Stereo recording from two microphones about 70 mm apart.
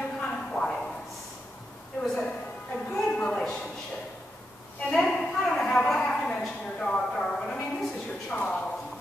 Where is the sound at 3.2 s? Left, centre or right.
Centre.